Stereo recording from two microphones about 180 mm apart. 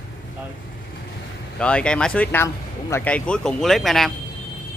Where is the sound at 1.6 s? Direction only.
5° left (ahead or behind).